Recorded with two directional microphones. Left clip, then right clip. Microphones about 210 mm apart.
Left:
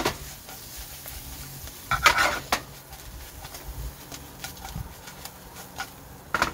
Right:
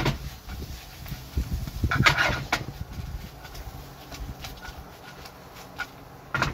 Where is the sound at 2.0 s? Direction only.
45° left (ahead or behind).